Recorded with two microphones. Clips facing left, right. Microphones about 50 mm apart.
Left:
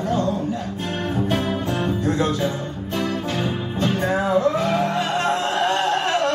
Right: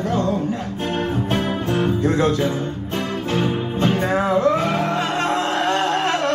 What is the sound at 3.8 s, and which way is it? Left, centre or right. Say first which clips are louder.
Music: right 2 dB; right.